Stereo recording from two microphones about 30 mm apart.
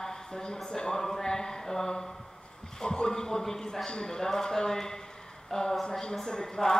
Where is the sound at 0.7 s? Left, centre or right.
Left.